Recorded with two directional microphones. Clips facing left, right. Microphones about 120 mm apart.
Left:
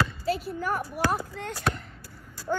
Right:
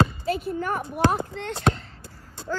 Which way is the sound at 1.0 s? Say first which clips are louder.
Right 5 dB; 25° right (ahead or behind).